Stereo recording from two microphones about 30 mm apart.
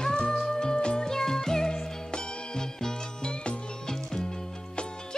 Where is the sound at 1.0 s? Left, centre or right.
Centre.